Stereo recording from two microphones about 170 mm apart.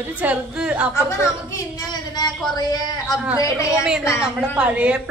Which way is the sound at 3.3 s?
15° left (ahead or behind).